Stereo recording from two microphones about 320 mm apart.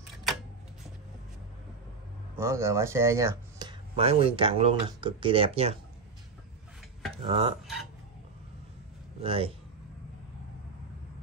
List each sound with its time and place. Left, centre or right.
2.3 s speech: centre
7.2 s speech: centre
9.2 s speech: centre